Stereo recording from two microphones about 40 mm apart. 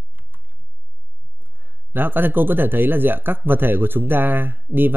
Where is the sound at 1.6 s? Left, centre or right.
Right.